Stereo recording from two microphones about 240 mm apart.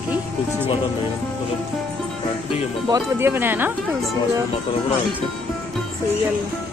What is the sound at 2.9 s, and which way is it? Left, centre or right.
Speech, centre.